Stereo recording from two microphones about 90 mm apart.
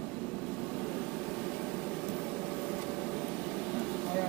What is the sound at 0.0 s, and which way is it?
Vehicle, 5° left (ahead or behind).